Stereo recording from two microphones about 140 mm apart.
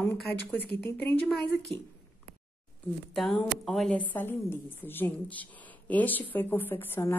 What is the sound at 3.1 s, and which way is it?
Speech, centre (ahead or behind).